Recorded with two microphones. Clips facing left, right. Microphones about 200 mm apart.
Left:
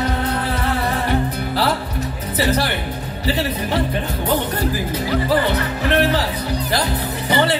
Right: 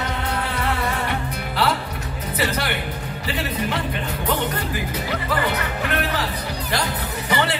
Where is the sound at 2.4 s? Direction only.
30° left (ahead or behind).